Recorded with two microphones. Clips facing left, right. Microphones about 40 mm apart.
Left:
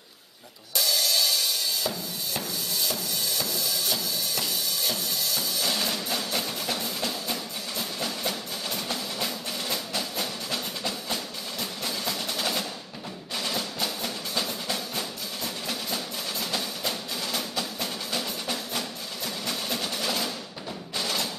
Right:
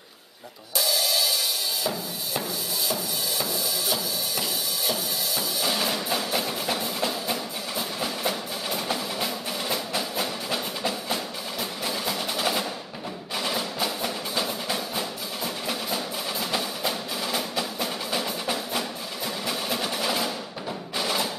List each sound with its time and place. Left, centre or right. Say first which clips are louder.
0.7 s music: right 1 dB; centre
11.8 s percussion: right 3 dB; centre
13.4 s music: right 3 dB; centre